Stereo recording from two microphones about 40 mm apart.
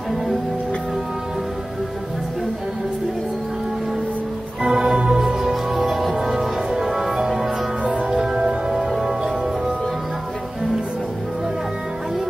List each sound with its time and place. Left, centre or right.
4.6 s music: centre
7.8 s music: right
8.1 s music: centre